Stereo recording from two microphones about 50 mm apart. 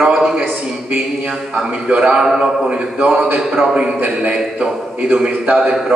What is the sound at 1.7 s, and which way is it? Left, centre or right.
A man's voice, right.